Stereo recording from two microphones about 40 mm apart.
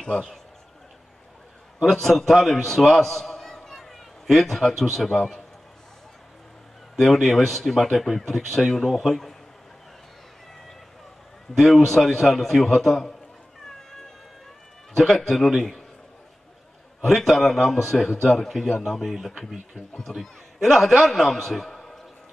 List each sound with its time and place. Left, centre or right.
0.0 s a man's voice: left
1.9 s a man's voice: centre
7.0 s a man's voice: centre
11.5 s a man's voice: centre
15.0 s a man's voice: centre
17.0 s a man's voice: centre